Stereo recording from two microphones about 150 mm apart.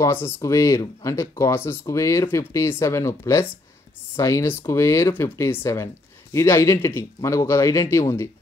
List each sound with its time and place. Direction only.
0.0 s speech: 20° left (ahead or behind)